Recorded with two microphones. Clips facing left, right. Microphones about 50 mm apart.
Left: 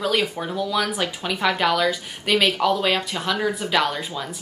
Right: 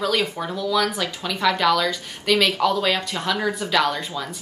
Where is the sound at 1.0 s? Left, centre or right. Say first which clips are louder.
Left 1 dB; left.